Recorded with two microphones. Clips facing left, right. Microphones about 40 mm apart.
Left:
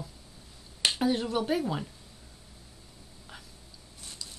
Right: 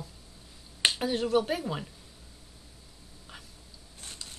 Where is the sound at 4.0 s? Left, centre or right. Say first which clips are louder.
Even; right.